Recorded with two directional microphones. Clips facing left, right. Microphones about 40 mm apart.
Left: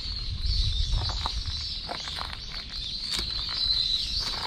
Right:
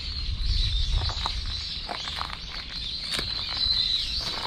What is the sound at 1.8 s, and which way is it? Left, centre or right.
Walk, right.